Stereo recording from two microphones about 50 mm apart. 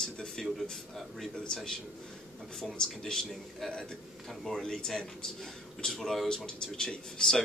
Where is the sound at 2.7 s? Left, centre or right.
Centre.